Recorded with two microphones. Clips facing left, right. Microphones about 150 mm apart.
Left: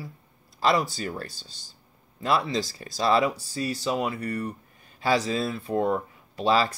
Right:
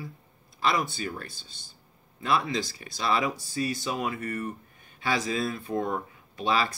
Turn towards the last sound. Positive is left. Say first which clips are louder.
# left 4 dB
turn(degrees=35)  # may be behind; listen again after turning